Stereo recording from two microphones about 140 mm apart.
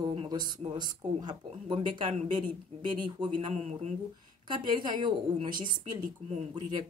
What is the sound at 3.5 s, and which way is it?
Speech, 50° right (ahead or behind).